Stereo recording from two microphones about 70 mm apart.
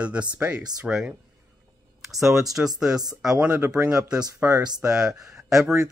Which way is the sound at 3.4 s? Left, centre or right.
Centre.